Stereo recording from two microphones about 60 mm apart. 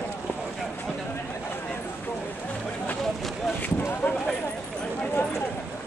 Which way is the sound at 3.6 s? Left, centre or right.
Left.